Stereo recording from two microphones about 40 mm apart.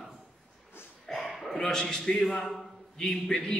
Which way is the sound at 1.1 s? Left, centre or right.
Centre.